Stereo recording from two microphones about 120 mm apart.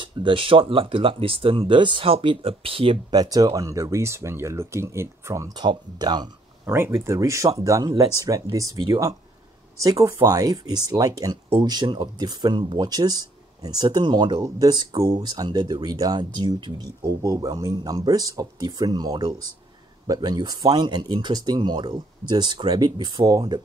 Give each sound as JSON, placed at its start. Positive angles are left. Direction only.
{"t": 0.0, "sound": "speech", "side_deg": -45}
{"t": 3.1, "sound": "speech", "side_deg": -30}
{"t": 6.6, "sound": "speech", "side_deg": -20}